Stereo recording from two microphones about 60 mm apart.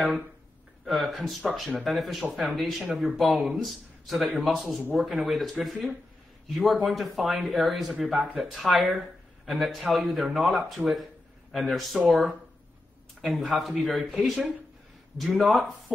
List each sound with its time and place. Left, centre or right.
0.8 s a man's voice: centre